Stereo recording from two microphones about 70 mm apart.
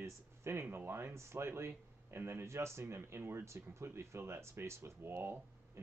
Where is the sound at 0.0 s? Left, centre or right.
Right.